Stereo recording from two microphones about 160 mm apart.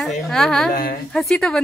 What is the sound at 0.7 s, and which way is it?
Speech, 65° left (ahead or behind).